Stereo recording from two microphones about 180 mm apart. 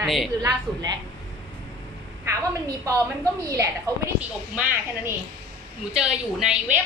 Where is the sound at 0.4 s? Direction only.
20° right (ahead or behind).